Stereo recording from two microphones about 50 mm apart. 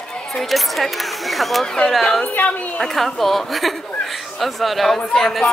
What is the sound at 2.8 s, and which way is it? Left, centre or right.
Speech, centre.